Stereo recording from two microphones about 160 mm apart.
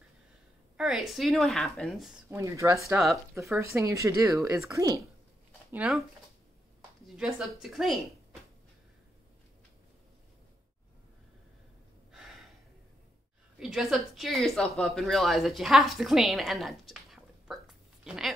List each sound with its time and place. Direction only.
0.7 s a woman's voice: centre (ahead or behind)
2.2 s speech: 15° right (ahead or behind)
5.7 s a woman's voice: 5° right (ahead or behind)
7.2 s a woman's voice: 5° right (ahead or behind)
12.1 s gasp: centre (ahead or behind)
13.6 s a woman's voice: centre (ahead or behind)